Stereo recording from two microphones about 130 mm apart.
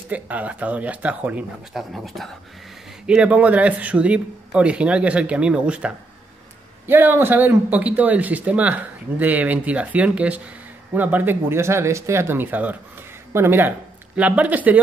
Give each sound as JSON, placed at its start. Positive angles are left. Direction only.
{"t": 0.1, "sound": "speech", "side_deg": -10}
{"t": 1.8, "sound": "speech", "side_deg": 0}